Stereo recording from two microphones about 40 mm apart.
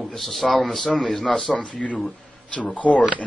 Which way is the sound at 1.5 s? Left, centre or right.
Left.